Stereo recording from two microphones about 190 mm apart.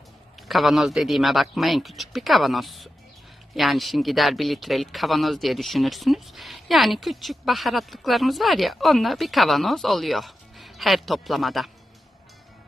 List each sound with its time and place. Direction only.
0.5 s speech: centre (ahead or behind)